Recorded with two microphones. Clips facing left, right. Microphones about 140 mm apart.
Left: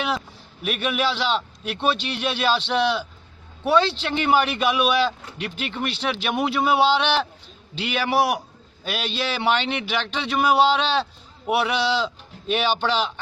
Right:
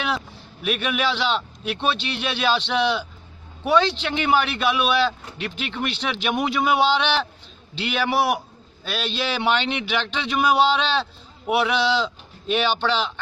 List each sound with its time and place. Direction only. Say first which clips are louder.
0.7 s a man's voice: even; 5° left (ahead or behind)
5.9 s speech: left 2 dB; 35° left (ahead or behind)
6.3 s a man's voice: even; 5° left (ahead or behind)